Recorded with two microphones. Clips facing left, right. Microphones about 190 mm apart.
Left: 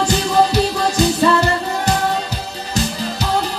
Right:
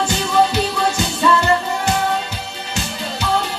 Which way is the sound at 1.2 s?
35° left (ahead or behind).